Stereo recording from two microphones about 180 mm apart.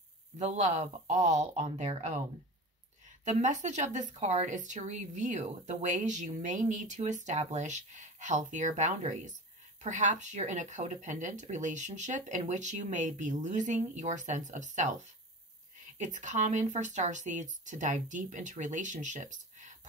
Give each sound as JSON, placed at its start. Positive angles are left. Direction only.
{"t": 0.4, "sound": "speech", "side_deg": -40}
{"t": 3.3, "sound": "speech", "side_deg": -40}